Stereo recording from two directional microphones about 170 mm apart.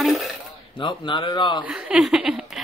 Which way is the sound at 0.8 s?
30° left (ahead or behind).